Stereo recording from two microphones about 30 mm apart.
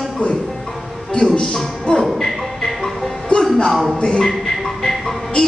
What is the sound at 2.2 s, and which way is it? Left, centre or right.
Music, centre.